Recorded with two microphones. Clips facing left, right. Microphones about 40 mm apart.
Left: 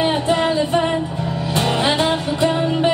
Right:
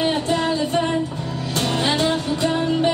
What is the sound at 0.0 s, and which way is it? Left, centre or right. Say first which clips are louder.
Music: left 3 dB; left.